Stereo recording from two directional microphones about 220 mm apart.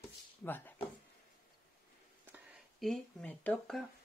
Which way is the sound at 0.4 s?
10° left (ahead or behind).